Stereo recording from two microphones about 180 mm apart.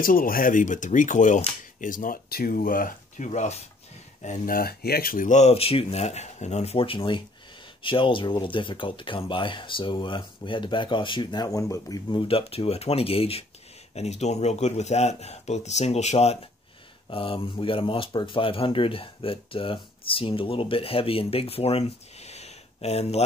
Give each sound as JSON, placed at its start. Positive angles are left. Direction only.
{"t": 0.0, "sound": "speech", "side_deg": 50}